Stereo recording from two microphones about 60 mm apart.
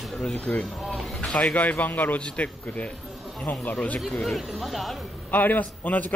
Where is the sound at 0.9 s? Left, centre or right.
Centre.